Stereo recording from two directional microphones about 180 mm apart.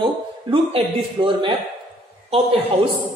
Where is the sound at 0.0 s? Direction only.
30° right (ahead or behind).